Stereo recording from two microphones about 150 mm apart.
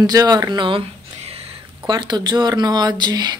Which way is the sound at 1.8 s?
30° right (ahead or behind).